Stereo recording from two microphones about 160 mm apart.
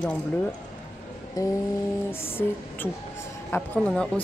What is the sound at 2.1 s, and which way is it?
A woman's voice, 15° left (ahead or behind).